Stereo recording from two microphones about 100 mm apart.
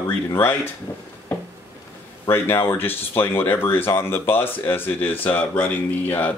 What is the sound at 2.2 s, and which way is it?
Speech, 25° left (ahead or behind).